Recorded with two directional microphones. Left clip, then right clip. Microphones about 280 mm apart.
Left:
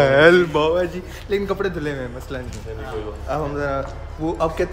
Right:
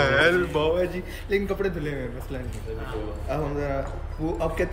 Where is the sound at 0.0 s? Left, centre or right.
Left.